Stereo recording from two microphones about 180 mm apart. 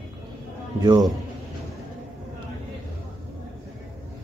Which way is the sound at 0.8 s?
25° right (ahead or behind).